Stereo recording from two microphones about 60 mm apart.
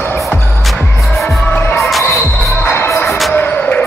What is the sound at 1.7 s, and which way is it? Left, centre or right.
Basketball bounce, centre.